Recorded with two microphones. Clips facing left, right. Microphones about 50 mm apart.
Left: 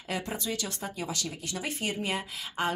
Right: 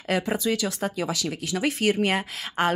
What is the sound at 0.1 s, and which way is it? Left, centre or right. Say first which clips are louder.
Speech: right 8 dB; right.